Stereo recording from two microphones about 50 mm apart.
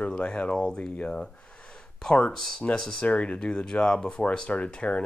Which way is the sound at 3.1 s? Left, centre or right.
Left.